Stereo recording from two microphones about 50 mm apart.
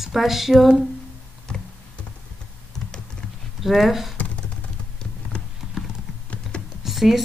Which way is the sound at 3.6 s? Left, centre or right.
Centre.